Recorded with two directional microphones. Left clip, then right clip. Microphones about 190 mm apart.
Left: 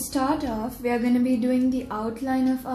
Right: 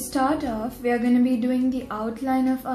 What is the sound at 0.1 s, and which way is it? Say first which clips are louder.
A woman's voice: right 2 dB; 25° left (ahead or behind).